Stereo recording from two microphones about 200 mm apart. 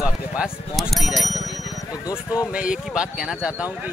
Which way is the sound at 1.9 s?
20° left (ahead or behind).